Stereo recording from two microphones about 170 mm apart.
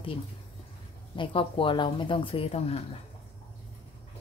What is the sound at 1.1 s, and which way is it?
Speech, 30° left (ahead or behind).